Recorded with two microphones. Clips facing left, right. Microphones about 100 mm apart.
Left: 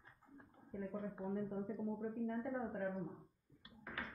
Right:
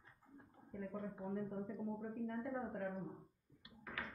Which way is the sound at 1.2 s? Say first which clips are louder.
Left 2 dB; 25° left (ahead or behind).